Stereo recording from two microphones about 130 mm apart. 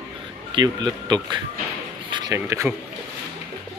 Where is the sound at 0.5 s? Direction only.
35° right (ahead or behind).